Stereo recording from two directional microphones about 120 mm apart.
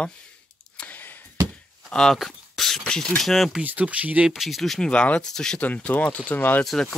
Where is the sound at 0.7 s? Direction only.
15° left (ahead or behind).